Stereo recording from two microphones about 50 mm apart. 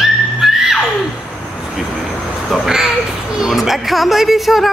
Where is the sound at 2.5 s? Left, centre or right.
Centre.